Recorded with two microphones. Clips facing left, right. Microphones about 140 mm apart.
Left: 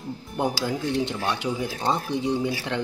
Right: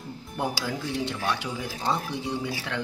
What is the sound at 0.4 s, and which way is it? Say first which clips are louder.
Speech: left 4 dB; 20° left (ahead or behind).